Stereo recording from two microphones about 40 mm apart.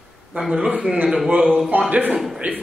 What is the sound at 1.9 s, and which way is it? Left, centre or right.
Speech, right.